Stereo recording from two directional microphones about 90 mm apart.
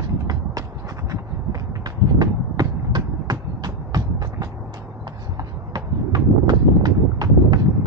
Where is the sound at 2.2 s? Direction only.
50° right (ahead or behind).